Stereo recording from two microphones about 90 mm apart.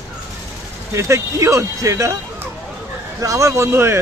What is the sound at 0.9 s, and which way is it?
Speech, 35° right (ahead or behind).